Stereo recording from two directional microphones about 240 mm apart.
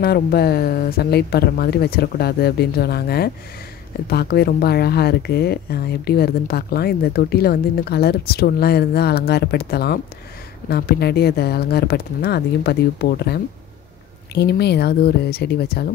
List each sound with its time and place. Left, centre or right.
0.0 s speech: left